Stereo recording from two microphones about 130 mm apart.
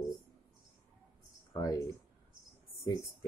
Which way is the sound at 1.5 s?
25° left (ahead or behind).